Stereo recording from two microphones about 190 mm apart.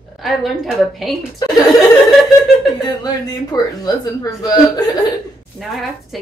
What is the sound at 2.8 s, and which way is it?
Speech, 20° left (ahead or behind).